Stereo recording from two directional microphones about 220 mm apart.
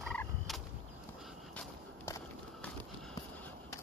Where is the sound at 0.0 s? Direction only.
5° left (ahead or behind).